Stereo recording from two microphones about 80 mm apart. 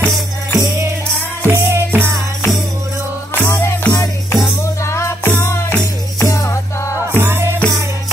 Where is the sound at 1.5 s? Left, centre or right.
Right.